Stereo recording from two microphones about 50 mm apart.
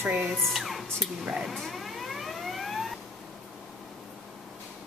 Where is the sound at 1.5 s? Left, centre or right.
Centre.